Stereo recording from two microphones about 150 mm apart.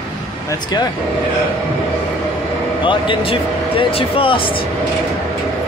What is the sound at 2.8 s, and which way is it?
Speech, 35° left (ahead or behind).